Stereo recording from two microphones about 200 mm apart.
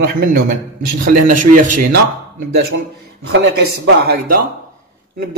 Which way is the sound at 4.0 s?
50° right (ahead or behind).